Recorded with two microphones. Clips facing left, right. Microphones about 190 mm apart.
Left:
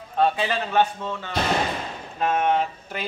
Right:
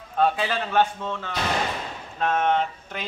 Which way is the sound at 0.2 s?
Centre (ahead or behind).